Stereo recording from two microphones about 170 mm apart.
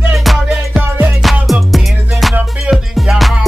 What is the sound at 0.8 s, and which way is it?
Music, 15° right (ahead or behind).